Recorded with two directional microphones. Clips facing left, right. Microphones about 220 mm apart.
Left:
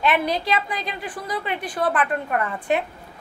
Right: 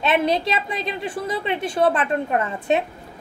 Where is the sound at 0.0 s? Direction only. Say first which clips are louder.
Right 2 dB; 25° right (ahead or behind).